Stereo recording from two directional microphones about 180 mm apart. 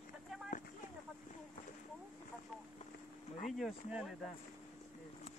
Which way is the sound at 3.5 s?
Centre (ahead or behind).